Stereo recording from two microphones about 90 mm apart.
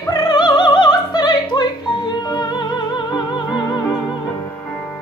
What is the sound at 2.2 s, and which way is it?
Music, 50° left (ahead or behind).